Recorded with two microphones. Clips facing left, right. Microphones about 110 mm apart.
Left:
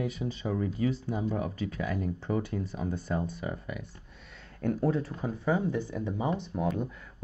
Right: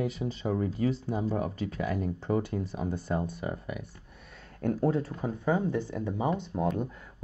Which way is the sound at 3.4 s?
40° right (ahead or behind).